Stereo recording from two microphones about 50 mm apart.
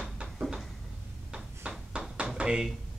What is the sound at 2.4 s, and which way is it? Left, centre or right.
Speech, centre.